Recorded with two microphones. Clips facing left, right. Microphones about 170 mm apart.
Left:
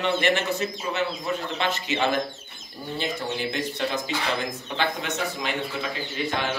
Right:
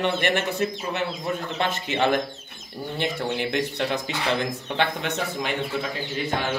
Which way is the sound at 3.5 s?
65° right (ahead or behind).